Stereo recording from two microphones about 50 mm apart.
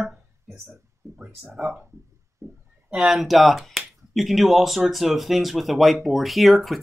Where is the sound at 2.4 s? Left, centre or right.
Right.